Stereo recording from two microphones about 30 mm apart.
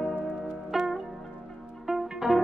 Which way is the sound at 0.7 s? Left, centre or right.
Centre.